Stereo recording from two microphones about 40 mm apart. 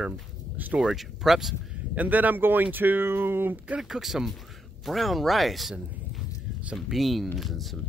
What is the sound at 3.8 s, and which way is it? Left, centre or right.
Speech, centre.